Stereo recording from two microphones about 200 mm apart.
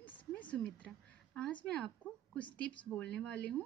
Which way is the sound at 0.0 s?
5° left (ahead or behind).